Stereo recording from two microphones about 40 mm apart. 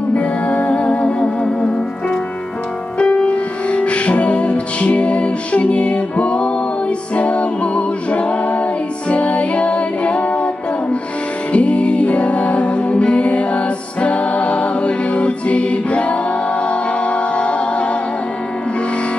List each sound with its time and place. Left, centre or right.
0.1 s music: left
3.3 s music: left